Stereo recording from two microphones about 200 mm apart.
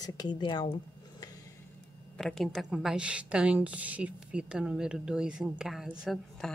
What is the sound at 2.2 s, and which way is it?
A woman's voice, centre (ahead or behind).